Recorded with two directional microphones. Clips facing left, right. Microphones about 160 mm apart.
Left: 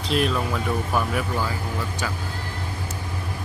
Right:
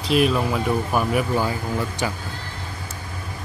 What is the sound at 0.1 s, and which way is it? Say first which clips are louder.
Speech: right 4 dB; 10° right (ahead or behind).